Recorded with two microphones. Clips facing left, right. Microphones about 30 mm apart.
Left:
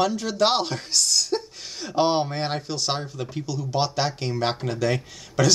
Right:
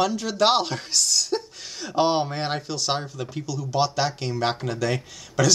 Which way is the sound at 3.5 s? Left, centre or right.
Left.